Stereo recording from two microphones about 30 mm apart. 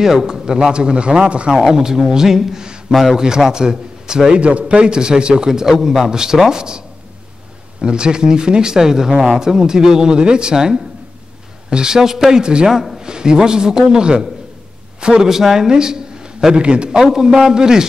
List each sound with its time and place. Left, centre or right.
0.0 s speech: centre; by 1.6 s right
1.6 s speech: centre
2.9 s a man's voice: centre
3.2 s speech: right
4.4 s a man's voice: right
7.8 s speech: right
10.1 s speech: right
12.6 s speech: centre
13.0 s a man's voice: right
15.2 s a man's voice: centre
16.5 s a man's voice: right
17.0 s speech: centre